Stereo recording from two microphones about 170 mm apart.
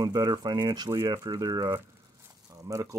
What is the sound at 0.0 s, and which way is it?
Speech, 20° right (ahead or behind).